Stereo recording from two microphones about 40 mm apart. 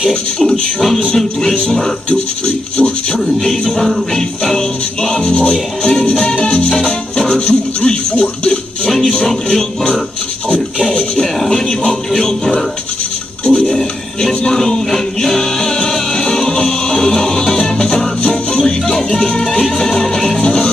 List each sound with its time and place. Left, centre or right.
0.4 s music: centre
2.0 s speech: left
3.4 s music: centre
7.3 s speech: left
8.8 s music: centre
11.1 s music: centre
14.9 s music: centre